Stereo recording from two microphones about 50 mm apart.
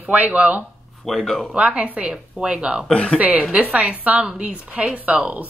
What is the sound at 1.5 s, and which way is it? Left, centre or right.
Speech, right.